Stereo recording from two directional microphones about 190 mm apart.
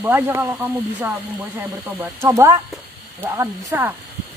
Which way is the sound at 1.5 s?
10° right (ahead or behind).